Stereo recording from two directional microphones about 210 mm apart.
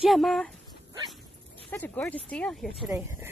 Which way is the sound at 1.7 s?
10° left (ahead or behind).